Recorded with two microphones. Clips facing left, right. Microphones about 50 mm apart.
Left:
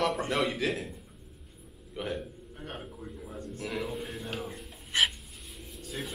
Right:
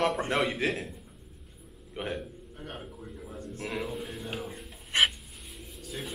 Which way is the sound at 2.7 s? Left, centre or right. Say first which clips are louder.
Left 2 dB; centre.